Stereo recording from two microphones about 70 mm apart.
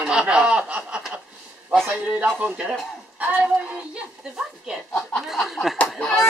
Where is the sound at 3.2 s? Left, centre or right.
Right.